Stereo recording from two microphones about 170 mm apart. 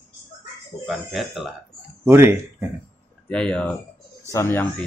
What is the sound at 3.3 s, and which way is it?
Speech, 5° left (ahead or behind).